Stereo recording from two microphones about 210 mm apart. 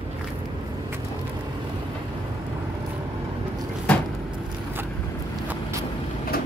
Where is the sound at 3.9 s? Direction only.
5° left (ahead or behind).